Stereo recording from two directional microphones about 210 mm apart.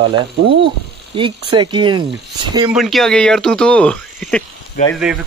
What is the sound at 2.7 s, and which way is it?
Speech, centre (ahead or behind).